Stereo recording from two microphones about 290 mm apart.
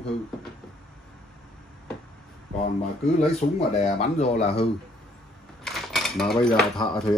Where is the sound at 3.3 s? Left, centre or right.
Left.